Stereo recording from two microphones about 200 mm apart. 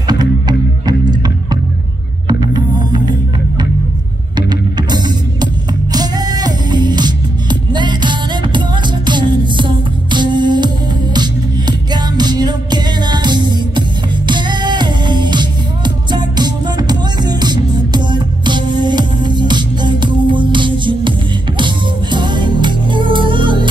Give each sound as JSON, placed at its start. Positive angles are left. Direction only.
{"t": 0.0, "sound": "music", "side_deg": -20}
{"t": 2.2, "sound": "music", "side_deg": -20}